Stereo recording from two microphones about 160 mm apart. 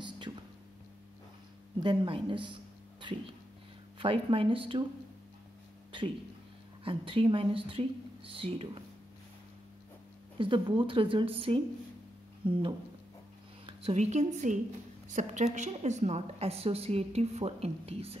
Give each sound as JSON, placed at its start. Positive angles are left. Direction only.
{"t": 1.8, "sound": "a woman's voice", "side_deg": -30}
{"t": 5.9, "sound": "a sound", "side_deg": -30}
{"t": 6.8, "sound": "a woman's voice", "side_deg": -35}
{"t": 10.4, "sound": "a woman's voice", "side_deg": -30}
{"t": 13.7, "sound": "a woman's voice", "side_deg": -40}